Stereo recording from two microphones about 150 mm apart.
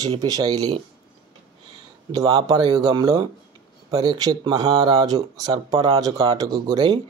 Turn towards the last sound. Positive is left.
turn(degrees=-25)  # may be behind; listen again after turning